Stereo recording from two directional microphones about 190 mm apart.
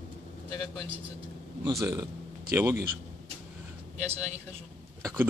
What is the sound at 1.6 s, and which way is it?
A man's voice, 20° right (ahead or behind).